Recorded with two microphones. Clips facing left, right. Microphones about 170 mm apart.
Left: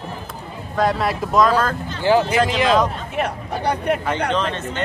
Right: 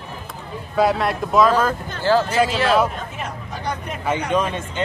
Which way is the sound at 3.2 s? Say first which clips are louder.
Left 7 dB; 65° left (ahead or behind).